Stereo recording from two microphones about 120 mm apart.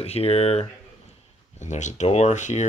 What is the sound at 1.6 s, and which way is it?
Speech, 80° left.